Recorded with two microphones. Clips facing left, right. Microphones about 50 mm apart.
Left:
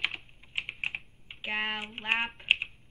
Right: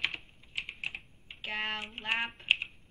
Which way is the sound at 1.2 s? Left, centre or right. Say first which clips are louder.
Left 3 dB; centre.